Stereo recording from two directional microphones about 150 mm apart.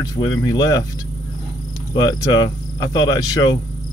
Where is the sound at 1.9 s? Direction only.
25° left (ahead or behind).